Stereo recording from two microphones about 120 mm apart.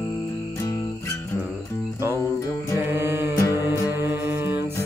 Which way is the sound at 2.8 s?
20° right (ahead or behind).